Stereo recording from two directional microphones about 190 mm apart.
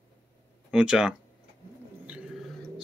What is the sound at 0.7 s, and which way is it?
Speech, 5° right (ahead or behind).